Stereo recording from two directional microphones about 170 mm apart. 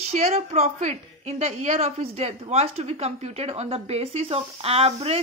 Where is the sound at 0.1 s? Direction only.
40° right (ahead or behind).